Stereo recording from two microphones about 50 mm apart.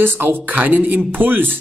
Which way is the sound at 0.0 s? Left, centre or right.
Right.